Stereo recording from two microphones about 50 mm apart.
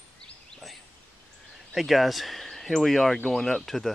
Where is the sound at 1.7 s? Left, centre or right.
Centre.